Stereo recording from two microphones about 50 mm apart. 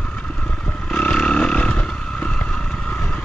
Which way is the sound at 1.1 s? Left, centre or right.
Centre.